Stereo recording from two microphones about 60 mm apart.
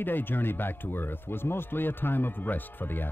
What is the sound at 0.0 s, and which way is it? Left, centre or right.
Speech, left.